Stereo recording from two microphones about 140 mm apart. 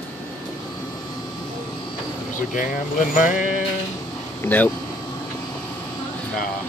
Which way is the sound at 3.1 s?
70° left (ahead or behind).